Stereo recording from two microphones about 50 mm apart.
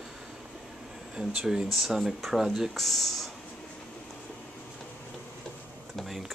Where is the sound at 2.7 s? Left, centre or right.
Centre.